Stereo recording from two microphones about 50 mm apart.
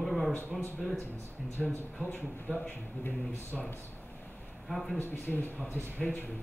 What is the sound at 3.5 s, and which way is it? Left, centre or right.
Speech, centre.